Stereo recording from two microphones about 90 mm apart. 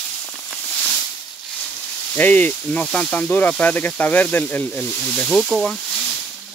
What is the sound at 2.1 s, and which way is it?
Speech, 20° left (ahead or behind).